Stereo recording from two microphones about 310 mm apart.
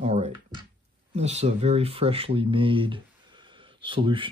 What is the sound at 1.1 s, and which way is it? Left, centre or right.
Speech, right.